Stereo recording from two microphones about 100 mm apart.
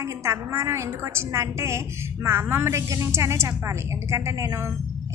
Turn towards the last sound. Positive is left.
turn(degrees=-30)  # may be behind; listen again after turning